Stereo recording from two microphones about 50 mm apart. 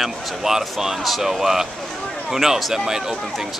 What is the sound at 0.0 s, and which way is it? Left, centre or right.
Speech, centre.